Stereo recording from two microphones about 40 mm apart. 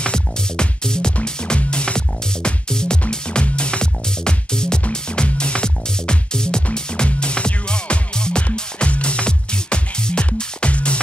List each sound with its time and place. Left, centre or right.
0.0 s music: left